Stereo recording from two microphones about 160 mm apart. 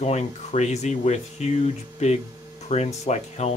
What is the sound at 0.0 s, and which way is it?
Speech, 45° left (ahead or behind).